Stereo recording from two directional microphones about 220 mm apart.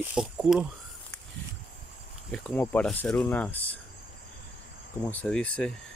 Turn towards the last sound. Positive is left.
turn(degrees=5)  # may be behind; listen again after turning